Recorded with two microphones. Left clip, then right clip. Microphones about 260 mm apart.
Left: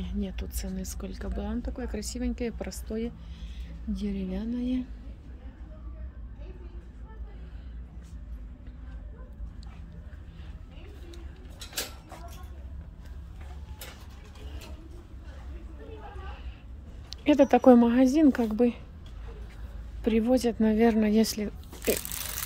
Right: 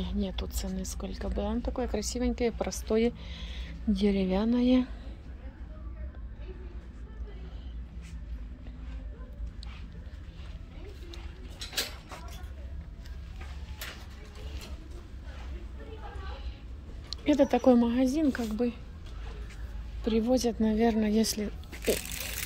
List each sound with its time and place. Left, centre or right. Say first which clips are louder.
0.0 s speech: right 2 dB; centre
17.1 s a woman's voice: left 4 dB; centre
20.0 s speech: left 2 dB; centre